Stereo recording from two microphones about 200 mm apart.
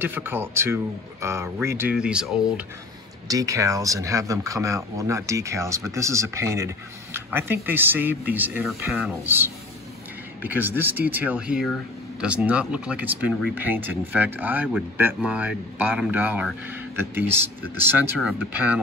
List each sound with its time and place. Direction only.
0.0 s speech: 10° right (ahead or behind)
3.3 s speech: 15° right (ahead or behind)